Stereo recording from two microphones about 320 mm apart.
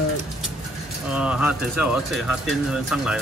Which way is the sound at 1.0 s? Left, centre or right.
Centre.